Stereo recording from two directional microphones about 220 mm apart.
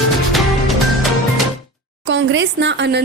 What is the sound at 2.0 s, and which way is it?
Speech, 55° right (ahead or behind).